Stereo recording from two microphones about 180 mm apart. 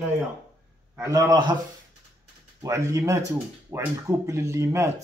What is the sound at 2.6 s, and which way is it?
Speech, 15° right (ahead or behind).